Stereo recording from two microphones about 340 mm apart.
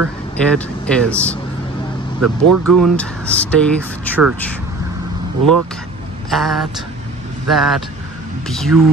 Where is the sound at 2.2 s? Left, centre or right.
Right.